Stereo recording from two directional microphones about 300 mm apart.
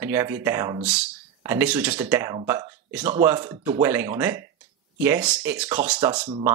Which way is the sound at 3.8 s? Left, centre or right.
Centre.